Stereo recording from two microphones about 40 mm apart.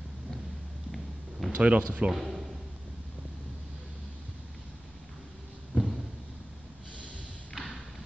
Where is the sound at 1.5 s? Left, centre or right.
Right.